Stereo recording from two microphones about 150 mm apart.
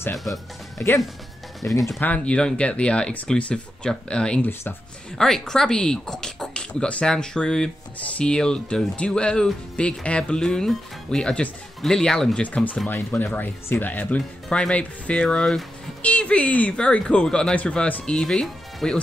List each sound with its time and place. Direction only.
0.7 s speech: 20° left (ahead or behind)
1.7 s speech: centre (ahead or behind)
2.0 s speech: 10° left (ahead or behind)